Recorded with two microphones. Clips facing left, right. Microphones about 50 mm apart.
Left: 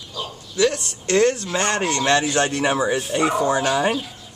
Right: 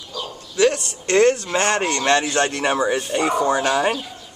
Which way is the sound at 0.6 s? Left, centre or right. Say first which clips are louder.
Right 2 dB; centre.